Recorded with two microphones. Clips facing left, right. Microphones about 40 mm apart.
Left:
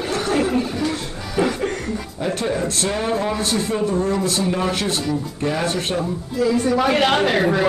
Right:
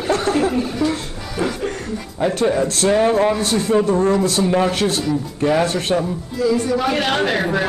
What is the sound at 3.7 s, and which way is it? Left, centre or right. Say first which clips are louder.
Speech: right 8 dB; right.